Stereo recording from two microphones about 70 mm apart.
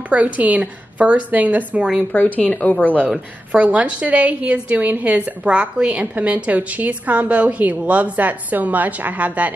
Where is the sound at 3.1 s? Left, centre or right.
Centre.